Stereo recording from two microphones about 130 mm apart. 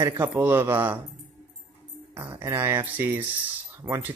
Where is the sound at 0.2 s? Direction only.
20° right (ahead or behind).